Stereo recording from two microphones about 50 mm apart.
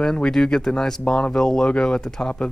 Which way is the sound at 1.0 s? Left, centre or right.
Left.